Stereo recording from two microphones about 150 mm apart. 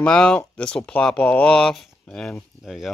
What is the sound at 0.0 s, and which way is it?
Speech, 5° left (ahead or behind).